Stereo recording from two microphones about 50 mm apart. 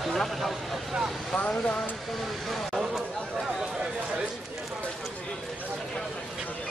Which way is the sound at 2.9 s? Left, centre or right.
Centre.